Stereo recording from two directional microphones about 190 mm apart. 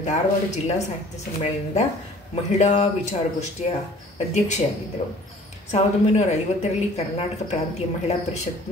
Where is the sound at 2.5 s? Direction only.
35° left (ahead or behind).